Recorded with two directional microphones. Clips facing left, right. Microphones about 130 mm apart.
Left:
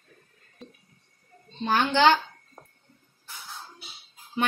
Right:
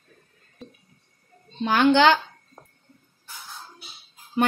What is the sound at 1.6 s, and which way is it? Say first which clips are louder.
Speech: right 6 dB; 75° right (ahead or behind).